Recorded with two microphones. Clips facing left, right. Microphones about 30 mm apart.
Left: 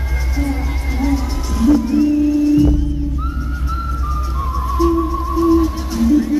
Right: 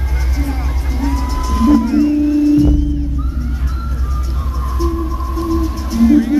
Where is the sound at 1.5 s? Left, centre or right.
Right.